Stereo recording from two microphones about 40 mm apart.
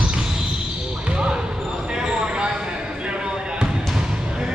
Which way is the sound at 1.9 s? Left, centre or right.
Right.